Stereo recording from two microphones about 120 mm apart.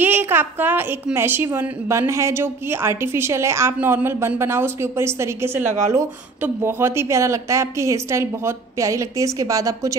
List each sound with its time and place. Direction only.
0.0 s a woman's voice: 15° right (ahead or behind)